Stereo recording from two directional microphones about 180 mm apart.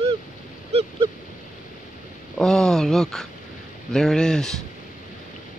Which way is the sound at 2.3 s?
5° left (ahead or behind).